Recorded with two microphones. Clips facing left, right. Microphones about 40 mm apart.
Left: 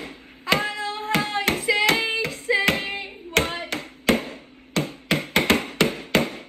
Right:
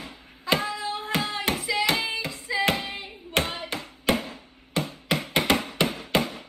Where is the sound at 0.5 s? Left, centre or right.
Left.